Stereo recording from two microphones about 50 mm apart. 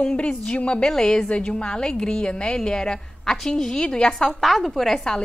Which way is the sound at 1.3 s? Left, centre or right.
Left.